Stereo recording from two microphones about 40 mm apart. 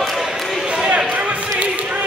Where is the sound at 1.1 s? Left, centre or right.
Right.